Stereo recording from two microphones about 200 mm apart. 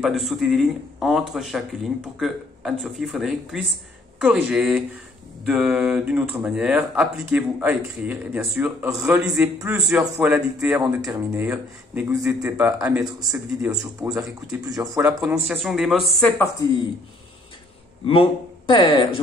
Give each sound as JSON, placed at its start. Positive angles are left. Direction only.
{"t": 0.0, "sound": "a man's voice", "side_deg": 0}
{"t": 13.7, "sound": "a man's voice", "side_deg": -20}
{"t": 15.3, "sound": "speech", "side_deg": 0}
{"t": 18.0, "sound": "speech", "side_deg": 25}